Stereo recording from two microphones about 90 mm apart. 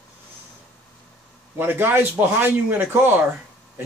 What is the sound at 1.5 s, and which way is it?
Speech, 25° right (ahead or behind).